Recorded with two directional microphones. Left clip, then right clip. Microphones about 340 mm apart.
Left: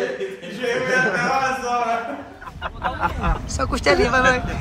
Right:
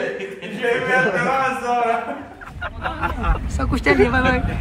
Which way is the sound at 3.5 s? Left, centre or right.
Centre.